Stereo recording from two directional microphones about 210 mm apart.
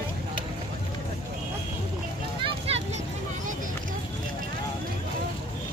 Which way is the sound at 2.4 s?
30° right (ahead or behind).